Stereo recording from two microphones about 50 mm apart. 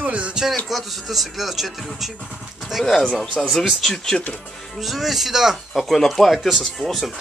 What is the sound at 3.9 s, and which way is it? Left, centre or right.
Speech, centre.